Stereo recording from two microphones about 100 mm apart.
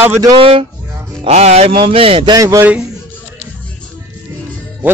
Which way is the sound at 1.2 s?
90° right.